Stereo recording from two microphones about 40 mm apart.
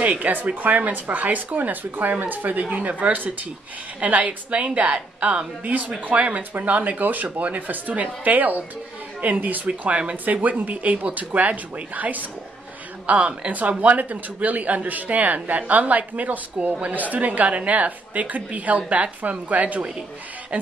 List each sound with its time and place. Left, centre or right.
0.0 s speech: right
9.7 s speech: right
10.2 s speech: right
16.6 s a woman's voice: right
16.9 s speech: right